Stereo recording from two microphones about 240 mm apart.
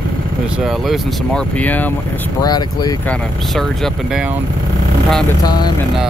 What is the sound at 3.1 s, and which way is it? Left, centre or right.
Speech, centre.